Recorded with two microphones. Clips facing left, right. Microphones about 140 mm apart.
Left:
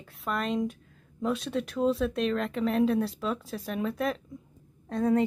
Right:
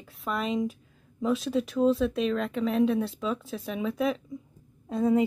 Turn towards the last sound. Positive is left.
turn(degrees=-5)  # may be behind; listen again after turning